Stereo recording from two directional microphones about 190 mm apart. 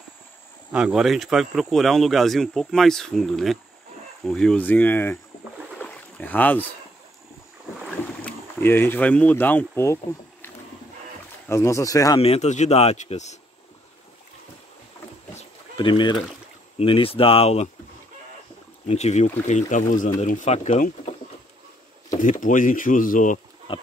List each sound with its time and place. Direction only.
0.7 s speech: 5° right (ahead or behind); by 5.2 s 10° left (ahead or behind)
5.8 s boat: 10° left (ahead or behind)
8.1 s speech: 10° left (ahead or behind)
11.4 s speech: 15° left (ahead or behind)
12.2 s speech: 35° left (ahead or behind)
15.3 s pigeon: 25° left (ahead or behind)
16.7 s speech: 30° left (ahead or behind)
18.9 s speech: 35° left (ahead or behind)
22.1 s speech: 40° left (ahead or behind)
23.7 s a sound: 30° left (ahead or behind)